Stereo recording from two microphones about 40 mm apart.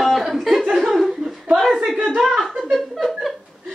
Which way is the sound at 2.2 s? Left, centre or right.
Centre.